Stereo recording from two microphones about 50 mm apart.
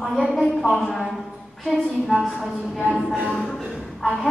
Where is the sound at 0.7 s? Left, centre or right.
Centre.